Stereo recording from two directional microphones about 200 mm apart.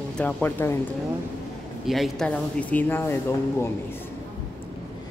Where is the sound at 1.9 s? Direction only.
Centre (ahead or behind).